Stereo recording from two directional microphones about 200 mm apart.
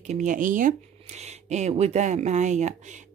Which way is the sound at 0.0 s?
35° right (ahead or behind).